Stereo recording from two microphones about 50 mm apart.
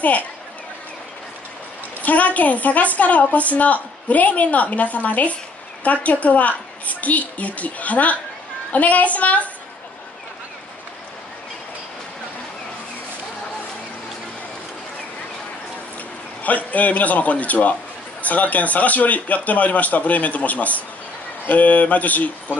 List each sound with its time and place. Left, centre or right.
2.0 s a woman's voice: left
16.4 s a woman's voice: left